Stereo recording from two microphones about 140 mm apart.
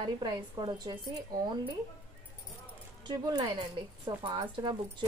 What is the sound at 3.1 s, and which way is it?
Speech, 30° right (ahead or behind).